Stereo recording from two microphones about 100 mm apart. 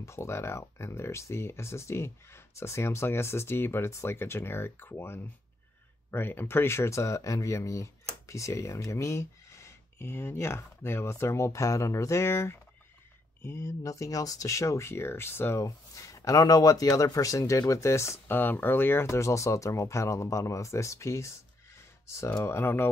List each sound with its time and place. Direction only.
0.0 s speech: 25° left (ahead or behind)